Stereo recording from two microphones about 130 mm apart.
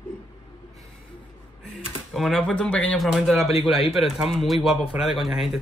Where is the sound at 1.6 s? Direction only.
Centre (ahead or behind).